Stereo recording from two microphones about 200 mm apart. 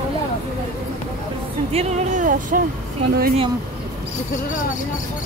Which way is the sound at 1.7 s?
30° right (ahead or behind).